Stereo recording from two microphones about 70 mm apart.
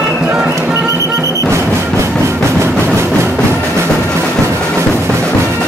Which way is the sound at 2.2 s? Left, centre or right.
Right.